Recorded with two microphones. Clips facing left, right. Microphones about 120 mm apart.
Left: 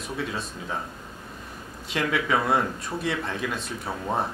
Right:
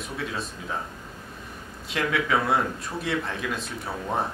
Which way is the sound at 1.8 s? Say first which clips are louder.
Even; centre (ahead or behind).